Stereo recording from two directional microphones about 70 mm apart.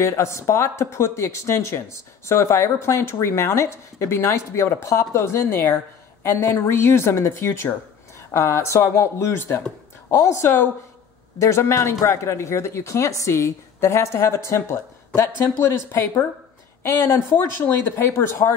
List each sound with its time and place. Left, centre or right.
0.2 s speech: left
10.4 s speech: left
11.3 s speech: left